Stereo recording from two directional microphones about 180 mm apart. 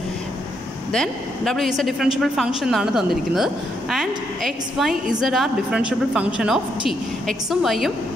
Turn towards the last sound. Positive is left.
turn(degrees=0)  # may be behind; listen again after turning